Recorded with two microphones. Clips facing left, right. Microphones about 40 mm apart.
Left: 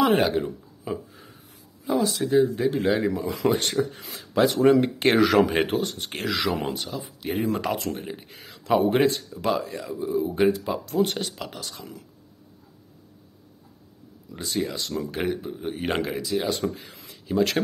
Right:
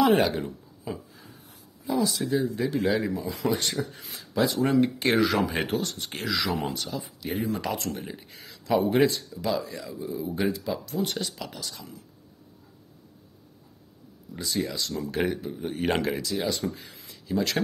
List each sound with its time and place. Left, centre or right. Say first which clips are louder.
0.0 s speech: left 1 dB; left
0.8 s a sound: left 4 dB; left
1.9 s speech: left 3 dB; left
3.1 s speech: left 4 dB; left
6.9 s speech: left 1 dB; centre
7.2 s speech: left 4 dB; left
7.7 s speech: left 3 dB; left
14.4 s speech: left 1 dB; left
15.0 s speech: even; centre
16.4 s speech: left 2 dB; left